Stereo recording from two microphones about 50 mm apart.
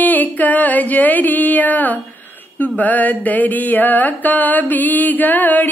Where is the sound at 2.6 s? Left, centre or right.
Left.